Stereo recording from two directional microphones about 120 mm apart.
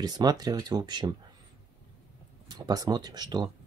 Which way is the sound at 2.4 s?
35° right (ahead or behind).